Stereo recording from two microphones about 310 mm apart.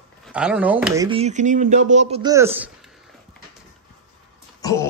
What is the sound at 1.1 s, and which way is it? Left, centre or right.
A man's voice, right.